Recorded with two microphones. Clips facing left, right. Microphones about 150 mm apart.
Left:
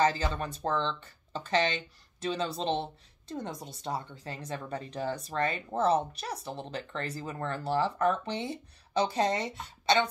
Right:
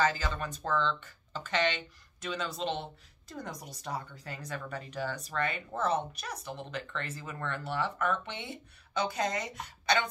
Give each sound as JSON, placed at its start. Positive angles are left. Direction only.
{"t": 0.0, "sound": "speech", "side_deg": 30}